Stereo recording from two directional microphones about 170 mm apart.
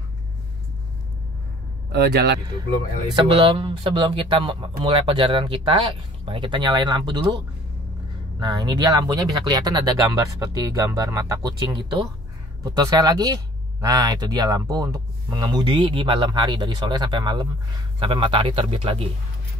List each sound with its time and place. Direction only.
1.9 s a man's voice: 75° right (ahead or behind)
3.2 s speech: 30° right (ahead or behind)